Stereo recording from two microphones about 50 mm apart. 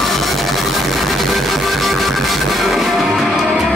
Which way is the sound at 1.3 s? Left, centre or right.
Centre.